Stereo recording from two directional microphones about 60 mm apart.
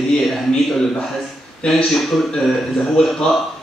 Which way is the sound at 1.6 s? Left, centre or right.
Centre.